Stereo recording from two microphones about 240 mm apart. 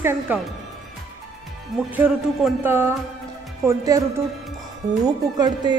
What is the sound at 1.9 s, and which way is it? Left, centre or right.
A woman's voice, centre.